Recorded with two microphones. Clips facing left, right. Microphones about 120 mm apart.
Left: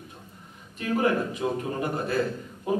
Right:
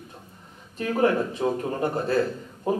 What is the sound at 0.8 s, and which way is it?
Speech, 35° right (ahead or behind).